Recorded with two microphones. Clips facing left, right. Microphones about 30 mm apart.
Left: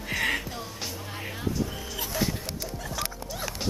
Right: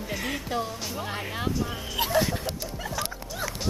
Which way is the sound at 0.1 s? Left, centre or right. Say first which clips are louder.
Left 5 dB; left.